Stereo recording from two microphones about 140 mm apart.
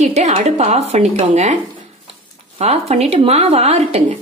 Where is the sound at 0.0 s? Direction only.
50° right (ahead or behind).